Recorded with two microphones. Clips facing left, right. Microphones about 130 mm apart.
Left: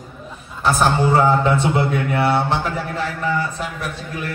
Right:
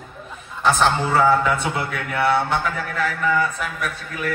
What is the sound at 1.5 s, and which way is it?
A man's voice, 25° left (ahead or behind).